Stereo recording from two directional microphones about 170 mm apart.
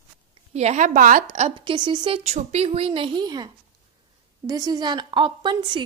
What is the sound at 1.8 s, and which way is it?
A woman's voice, 30° right (ahead or behind).